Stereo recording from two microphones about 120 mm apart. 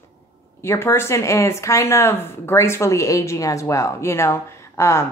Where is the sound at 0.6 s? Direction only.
20° left (ahead or behind).